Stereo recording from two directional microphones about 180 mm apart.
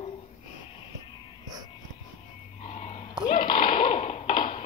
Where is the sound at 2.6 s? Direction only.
40° left (ahead or behind).